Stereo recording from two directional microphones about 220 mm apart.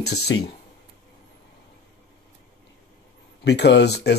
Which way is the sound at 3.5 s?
50° left (ahead or behind).